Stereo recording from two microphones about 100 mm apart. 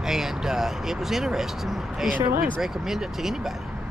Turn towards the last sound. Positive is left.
turn(degrees=-5)  # may be behind; listen again after turning